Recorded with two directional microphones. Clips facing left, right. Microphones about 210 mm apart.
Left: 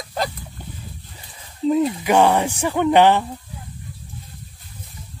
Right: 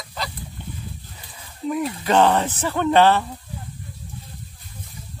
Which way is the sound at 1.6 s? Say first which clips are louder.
Left 6 dB; 25° left (ahead or behind).